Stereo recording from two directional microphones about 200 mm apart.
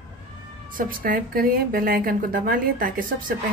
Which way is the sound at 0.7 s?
45° right (ahead or behind).